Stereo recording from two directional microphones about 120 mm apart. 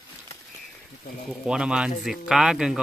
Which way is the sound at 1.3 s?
5° right (ahead or behind).